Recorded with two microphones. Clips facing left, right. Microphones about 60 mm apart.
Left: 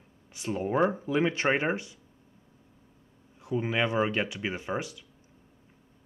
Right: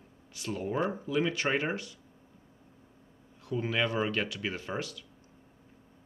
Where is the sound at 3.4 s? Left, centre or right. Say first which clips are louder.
Left 2 dB; centre.